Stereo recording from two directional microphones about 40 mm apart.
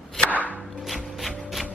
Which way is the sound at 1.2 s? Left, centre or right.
Centre.